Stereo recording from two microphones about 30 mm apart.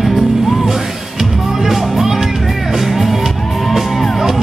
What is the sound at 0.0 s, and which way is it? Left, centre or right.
Music, centre.